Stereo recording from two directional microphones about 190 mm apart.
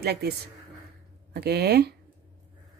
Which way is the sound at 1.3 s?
55° right (ahead or behind).